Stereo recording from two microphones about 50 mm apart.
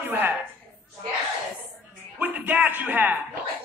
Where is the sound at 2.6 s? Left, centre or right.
Right.